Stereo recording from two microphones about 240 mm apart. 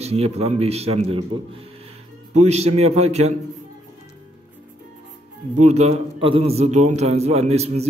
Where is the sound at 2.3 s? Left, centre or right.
Right.